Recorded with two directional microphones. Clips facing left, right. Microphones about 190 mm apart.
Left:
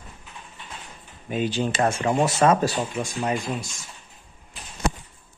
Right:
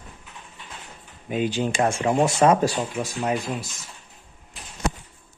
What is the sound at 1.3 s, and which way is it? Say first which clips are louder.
Speech: right 1 dB; 15° right (ahead or behind).